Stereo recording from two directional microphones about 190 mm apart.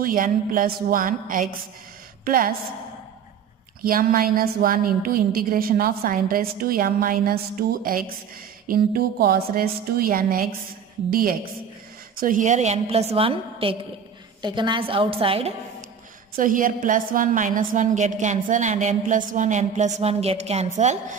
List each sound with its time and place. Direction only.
0.0 s a woman's voice: 50° right (ahead or behind)
3.8 s a woman's voice: 50° right (ahead or behind); by 15.5 s 30° right (ahead or behind)
16.3 s a woman's voice: 45° right (ahead or behind)